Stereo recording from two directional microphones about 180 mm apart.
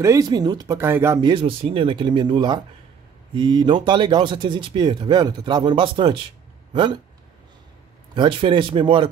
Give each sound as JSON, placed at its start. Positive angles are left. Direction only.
{"t": 0.0, "sound": "speech", "side_deg": -20}
{"t": 1.2, "sound": "speech", "side_deg": -30}
{"t": 8.1, "sound": "speech", "side_deg": -25}